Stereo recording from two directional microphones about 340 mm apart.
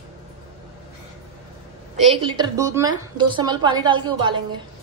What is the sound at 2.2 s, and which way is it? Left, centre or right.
A woman's voice, centre.